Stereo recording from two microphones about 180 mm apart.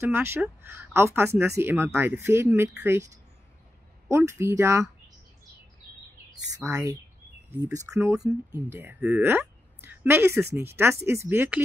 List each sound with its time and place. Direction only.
0.0 s speech: 10° right (ahead or behind)
4.1 s speech: 15° right (ahead or behind)
6.6 s speech: 20° right (ahead or behind)